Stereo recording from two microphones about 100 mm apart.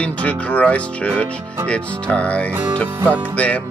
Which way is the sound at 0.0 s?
15° left (ahead or behind).